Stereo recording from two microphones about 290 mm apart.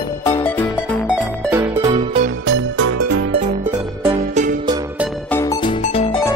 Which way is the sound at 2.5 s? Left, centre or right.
Right.